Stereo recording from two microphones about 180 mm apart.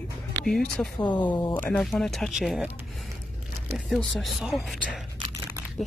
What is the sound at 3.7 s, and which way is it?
Speech, centre (ahead or behind).